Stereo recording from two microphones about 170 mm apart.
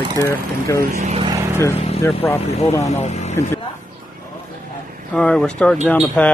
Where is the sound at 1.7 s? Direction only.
40° left (ahead or behind).